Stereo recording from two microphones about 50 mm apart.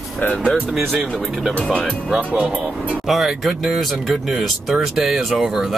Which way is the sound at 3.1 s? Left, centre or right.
Centre.